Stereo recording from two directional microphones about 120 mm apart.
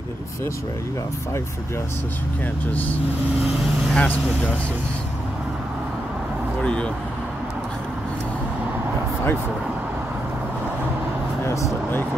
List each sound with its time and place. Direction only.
2.7 s speech: 15° left (ahead or behind)
6.6 s speech: 10° left (ahead or behind)
11.4 s speech: 25° left (ahead or behind)